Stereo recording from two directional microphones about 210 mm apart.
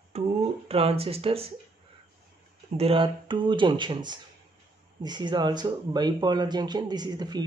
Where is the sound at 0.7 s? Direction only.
30° right (ahead or behind).